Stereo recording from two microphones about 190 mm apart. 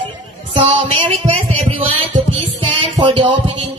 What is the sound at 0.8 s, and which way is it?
Music, 35° right (ahead or behind).